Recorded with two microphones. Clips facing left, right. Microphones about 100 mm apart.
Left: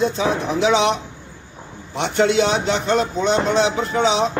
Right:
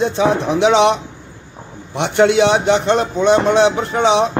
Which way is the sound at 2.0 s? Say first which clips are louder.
Right 5 dB; 70° right (ahead or behind).